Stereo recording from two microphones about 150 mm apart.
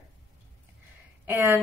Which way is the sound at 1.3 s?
15° right (ahead or behind).